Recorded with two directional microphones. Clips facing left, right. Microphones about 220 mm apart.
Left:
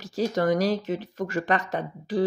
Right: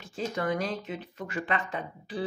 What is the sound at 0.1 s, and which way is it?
Speech, 40° left (ahead or behind).